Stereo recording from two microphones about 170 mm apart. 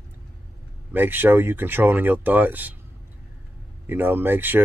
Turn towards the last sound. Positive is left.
turn(degrees=-10)  # may be behind; listen again after turning